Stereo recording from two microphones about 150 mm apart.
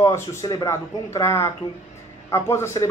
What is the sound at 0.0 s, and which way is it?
Speech, 20° left (ahead or behind).